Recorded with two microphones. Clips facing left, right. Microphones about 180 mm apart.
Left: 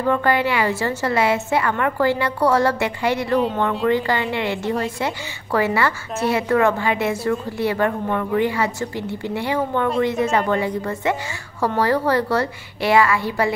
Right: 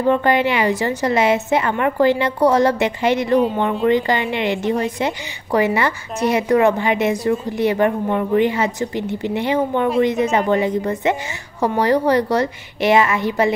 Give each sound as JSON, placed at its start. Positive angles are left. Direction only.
{"t": 0.0, "sound": "a woman's voice", "side_deg": -20}
{"t": 3.3, "sound": "speech", "side_deg": 0}
{"t": 3.8, "sound": "a woman's voice", "side_deg": -20}